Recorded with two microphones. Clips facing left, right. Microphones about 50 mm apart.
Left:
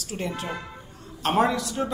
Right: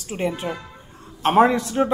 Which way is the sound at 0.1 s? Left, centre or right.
Right.